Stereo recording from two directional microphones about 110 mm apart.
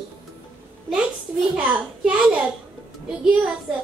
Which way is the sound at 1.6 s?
10° right (ahead or behind).